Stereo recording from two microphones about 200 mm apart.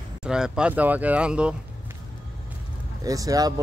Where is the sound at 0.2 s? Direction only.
5° right (ahead or behind).